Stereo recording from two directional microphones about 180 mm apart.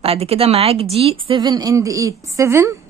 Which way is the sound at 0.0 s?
35° right (ahead or behind).